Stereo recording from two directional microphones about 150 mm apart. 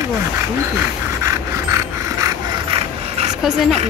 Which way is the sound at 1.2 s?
20° right (ahead or behind).